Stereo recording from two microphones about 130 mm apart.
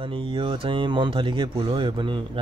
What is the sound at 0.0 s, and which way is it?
Speech, 40° right (ahead or behind).